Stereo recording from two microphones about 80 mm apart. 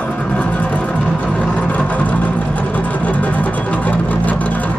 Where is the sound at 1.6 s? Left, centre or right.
Centre.